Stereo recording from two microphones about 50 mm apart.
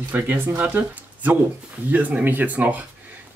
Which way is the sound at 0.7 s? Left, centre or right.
Right.